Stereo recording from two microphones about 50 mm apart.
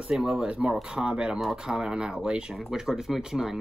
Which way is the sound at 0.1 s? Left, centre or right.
Centre.